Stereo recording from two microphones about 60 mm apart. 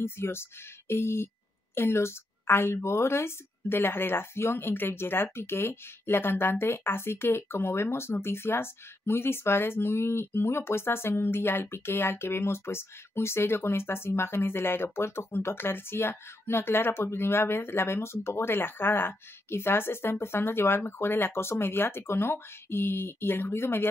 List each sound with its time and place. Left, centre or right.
0.0 s a woman's voice: left